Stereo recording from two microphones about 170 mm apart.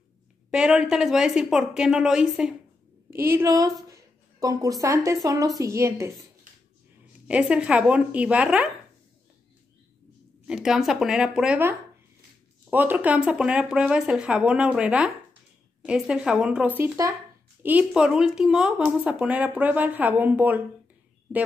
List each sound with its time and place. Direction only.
0.5 s speech: 5° right (ahead or behind)
3.3 s a woman's voice: 15° right (ahead or behind)
7.2 s speech: 5° right (ahead or behind)
10.4 s speech: centre (ahead or behind)